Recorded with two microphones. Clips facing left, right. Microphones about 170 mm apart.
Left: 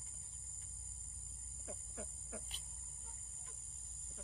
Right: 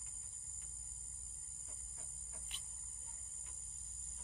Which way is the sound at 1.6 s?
90° left.